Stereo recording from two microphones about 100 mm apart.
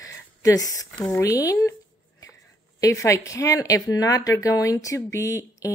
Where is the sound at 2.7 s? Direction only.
30° left (ahead or behind).